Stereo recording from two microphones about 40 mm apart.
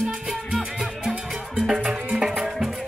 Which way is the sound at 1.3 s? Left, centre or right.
Centre.